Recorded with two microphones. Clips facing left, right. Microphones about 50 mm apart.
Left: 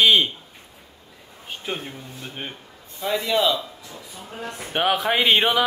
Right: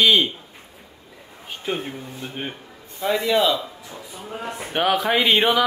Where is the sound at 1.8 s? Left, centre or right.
Right.